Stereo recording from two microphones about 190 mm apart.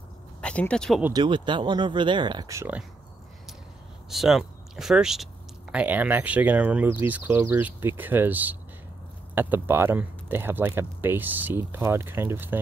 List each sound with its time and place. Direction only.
0.4 s speech: 5° left (ahead or behind)
1.1 s speech: 25° right (ahead or behind)
4.1 s speech: centre (ahead or behind)